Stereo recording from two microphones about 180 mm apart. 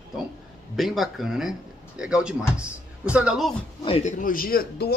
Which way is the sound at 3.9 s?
40° left (ahead or behind).